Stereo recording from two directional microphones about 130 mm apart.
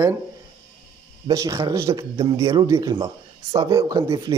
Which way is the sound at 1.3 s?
25° right (ahead or behind).